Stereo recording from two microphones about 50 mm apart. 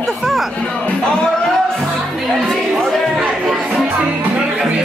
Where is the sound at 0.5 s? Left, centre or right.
Left.